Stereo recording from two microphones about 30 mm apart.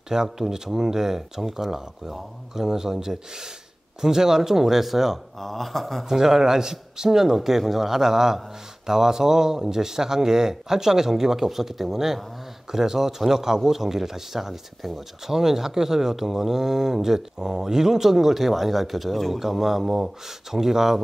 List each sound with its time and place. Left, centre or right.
0.1 s speech: centre
5.4 s a sound: centre
6.0 s speech: centre
7.3 s speech: centre